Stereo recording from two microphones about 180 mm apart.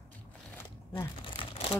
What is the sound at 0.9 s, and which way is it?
Crumpling, 25° left (ahead or behind).